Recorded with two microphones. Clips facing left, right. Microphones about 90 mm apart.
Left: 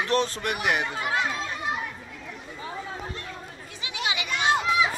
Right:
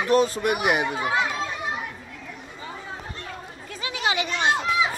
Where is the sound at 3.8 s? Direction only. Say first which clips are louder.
Right 5 dB; 45° right (ahead or behind).